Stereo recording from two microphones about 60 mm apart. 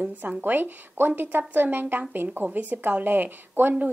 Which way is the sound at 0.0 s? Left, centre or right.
Right.